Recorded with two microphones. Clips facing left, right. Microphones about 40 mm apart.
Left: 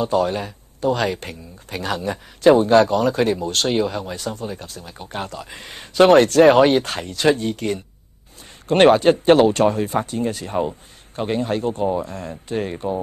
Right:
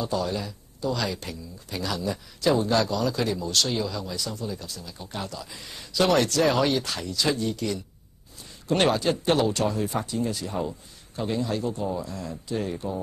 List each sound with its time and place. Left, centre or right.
0.0 s speech: left